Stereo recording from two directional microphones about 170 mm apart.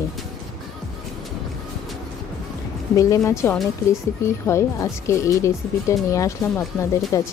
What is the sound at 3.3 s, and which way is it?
Speech, 15° left (ahead or behind).